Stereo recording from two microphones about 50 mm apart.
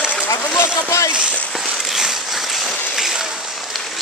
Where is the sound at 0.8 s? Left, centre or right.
Left.